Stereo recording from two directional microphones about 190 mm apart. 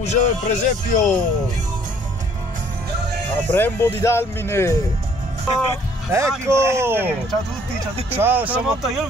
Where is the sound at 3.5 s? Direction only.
10° left (ahead or behind).